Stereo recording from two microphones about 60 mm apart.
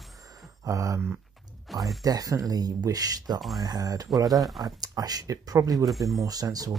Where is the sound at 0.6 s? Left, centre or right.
Right.